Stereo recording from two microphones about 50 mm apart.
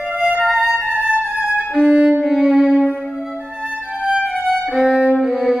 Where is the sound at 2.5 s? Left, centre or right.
Right.